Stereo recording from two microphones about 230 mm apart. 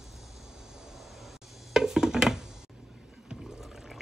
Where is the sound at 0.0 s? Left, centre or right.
Centre.